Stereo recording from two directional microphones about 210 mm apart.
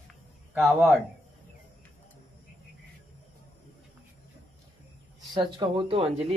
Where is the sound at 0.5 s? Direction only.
Centre (ahead or behind).